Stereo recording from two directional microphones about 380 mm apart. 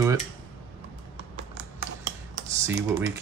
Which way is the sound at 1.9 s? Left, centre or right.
Right.